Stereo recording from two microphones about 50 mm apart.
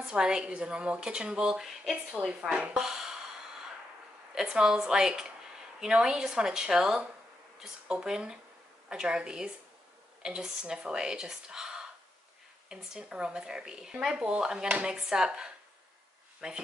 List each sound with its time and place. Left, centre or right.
0.0 s speech: centre
2.5 s speech: centre
4.4 s speech: centre
15.0 s speech: centre